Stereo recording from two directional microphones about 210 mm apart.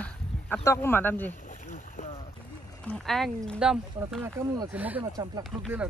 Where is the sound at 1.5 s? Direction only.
35° left (ahead or behind).